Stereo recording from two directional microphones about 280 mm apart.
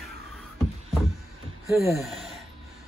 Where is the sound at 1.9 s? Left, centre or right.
Centre.